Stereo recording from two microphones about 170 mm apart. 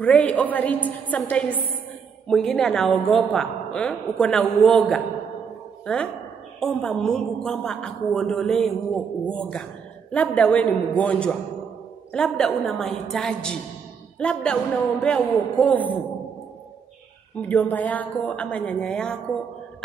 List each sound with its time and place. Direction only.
0.0 s a woman's voice: 10° left (ahead or behind)
6.6 s a woman's voice: 5° left (ahead or behind)
17.4 s a woman's voice: 10° left (ahead or behind)